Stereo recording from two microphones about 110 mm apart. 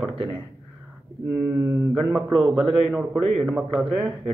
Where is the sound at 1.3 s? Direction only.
20° right (ahead or behind).